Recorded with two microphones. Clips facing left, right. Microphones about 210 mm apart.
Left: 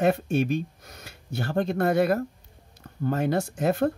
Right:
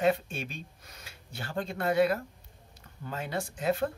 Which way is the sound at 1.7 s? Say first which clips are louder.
Left 2 dB; 45° left (ahead or behind).